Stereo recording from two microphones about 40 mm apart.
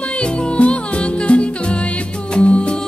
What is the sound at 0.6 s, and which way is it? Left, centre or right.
Music, left.